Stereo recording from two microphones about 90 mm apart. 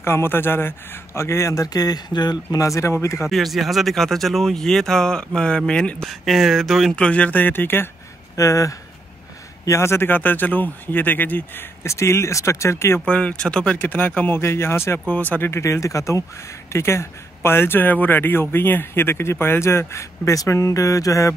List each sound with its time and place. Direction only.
0.0 s speech: 25° left (ahead or behind); by 2.6 s 50° left (ahead or behind)
2.6 s speech: 35° left (ahead or behind)
3.3 s speech: centre (ahead or behind); by 7.9 s 25° left (ahead or behind)
8.4 s speech: 35° left (ahead or behind); by 11.6 s 20° left (ahead or behind)
11.8 s speech: 30° left (ahead or behind)
13.0 s speech: 15° left (ahead or behind); by 15.0 s 30° left (ahead or behind)
15.0 s speech: 20° left (ahead or behind)
15.5 s speech: 35° left (ahead or behind)